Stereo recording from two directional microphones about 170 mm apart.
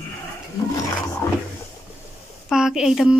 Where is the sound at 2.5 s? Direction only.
5° right (ahead or behind).